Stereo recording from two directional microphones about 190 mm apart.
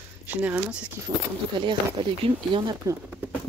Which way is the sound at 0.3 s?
10° right (ahead or behind).